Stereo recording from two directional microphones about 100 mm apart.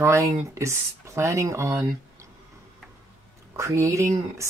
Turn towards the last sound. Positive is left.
turn(degrees=-30)  # may be behind; listen again after turning